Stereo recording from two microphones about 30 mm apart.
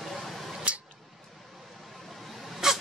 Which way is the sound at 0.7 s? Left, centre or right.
Right.